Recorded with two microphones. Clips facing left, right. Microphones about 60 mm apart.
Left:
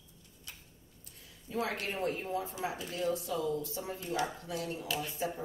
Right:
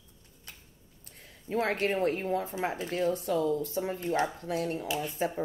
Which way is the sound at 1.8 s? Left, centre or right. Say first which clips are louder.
Right 7 dB; right.